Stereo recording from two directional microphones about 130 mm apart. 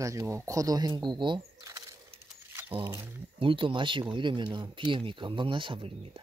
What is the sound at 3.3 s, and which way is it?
Speech, 40° right (ahead or behind).